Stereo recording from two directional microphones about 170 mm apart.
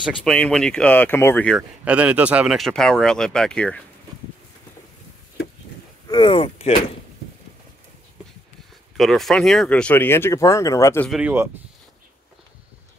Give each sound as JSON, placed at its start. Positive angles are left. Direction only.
{"t": 0.0, "sound": "speech", "side_deg": 5}
{"t": 1.6, "sound": "speech", "side_deg": -10}
{"t": 6.0, "sound": "speech", "side_deg": 30}
{"t": 8.9, "sound": "speech", "side_deg": 0}
{"t": 11.1, "sound": "speech", "side_deg": -5}